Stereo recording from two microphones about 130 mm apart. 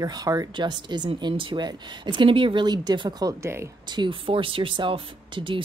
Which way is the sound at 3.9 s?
40° right (ahead or behind).